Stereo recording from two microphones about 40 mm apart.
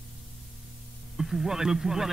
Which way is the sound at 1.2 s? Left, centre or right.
Centre.